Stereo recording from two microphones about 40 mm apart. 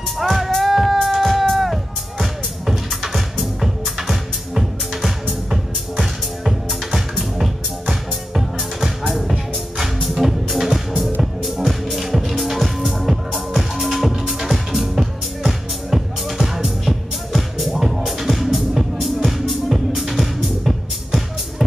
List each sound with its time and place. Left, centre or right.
0.2 s music: centre
9.3 s music: centre
10.0 s music: centre